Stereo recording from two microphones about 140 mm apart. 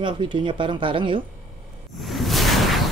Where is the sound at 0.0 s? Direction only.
35° right (ahead or behind).